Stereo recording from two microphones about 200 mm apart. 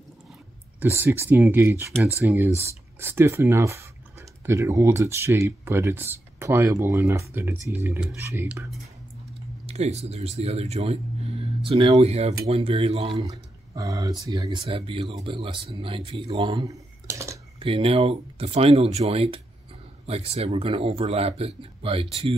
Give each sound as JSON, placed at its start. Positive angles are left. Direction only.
{"t": 0.7, "sound": "speech", "side_deg": -10}
{"t": 9.7, "sound": "speech", "side_deg": -30}
{"t": 13.2, "sound": "speech", "side_deg": -15}
{"t": 17.6, "sound": "speech", "side_deg": -30}